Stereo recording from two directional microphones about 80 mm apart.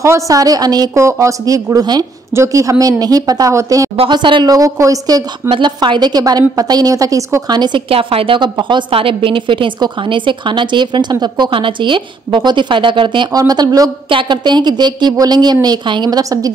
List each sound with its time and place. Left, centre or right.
0.0 s a woman's voice: right
0.4 s speech: right
0.9 s speech: right
2.3 s speech: right
4.1 s a woman's voice: right
4.5 s speech: right
5.5 s a woman's voice: right
7.4 s a woman's voice: right
13.3 s a woman's voice: right
16.2 s speech: right